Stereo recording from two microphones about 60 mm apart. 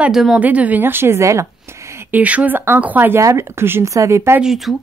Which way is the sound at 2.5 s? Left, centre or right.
Right.